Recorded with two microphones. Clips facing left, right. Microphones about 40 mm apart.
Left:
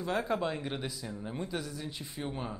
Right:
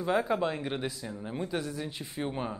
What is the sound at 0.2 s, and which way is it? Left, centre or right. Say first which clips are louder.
Speech: right 3 dB; centre.